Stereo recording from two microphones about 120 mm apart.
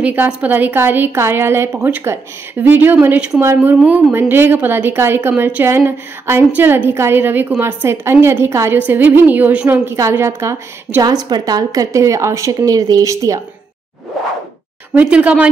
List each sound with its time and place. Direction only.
0.0 s a woman's voice: 15° right (ahead or behind)
15.0 s a woman's voice: 10° right (ahead or behind)